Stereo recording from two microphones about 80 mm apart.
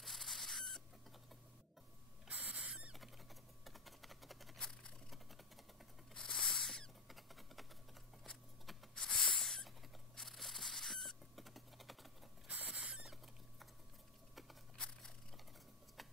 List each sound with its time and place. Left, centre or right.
0.0 s rodents: centre
2.2 s owl: centre
2.9 s a sound: centre
6.1 s rodents: centre
12.4 s rodents: centre
12.8 s rodents: centre
14.3 s a sound: centre